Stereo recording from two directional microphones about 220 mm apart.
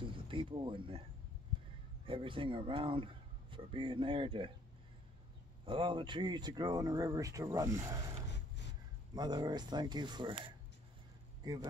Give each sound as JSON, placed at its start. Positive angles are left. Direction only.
{"t": 0.0, "sound": "speech", "side_deg": -25}
{"t": 2.0, "sound": "a man's voice", "side_deg": -25}
{"t": 5.7, "sound": "speech", "side_deg": -25}
{"t": 9.1, "sound": "a man's voice", "side_deg": -20}